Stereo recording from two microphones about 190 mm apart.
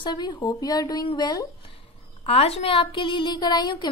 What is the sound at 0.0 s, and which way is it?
Speech, 25° left (ahead or behind).